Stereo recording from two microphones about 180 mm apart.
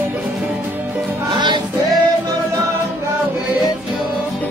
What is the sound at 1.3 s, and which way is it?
Music, 25° right (ahead or behind).